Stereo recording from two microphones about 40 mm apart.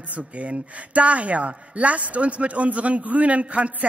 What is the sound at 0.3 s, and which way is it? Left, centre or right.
A man's voice, right.